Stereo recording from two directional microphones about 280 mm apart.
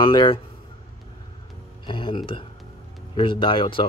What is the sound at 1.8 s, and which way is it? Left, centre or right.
Speech, centre.